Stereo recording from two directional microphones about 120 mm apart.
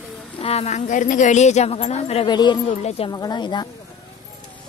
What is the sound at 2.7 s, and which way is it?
Speech, 60° left (ahead or behind).